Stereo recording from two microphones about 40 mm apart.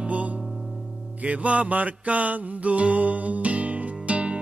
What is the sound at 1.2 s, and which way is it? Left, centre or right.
Music, right.